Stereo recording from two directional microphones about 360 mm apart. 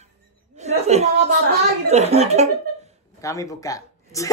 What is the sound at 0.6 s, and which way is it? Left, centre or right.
Chuckle, centre.